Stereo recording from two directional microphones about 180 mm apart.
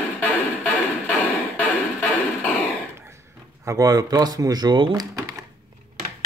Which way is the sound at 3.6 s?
20° right (ahead or behind).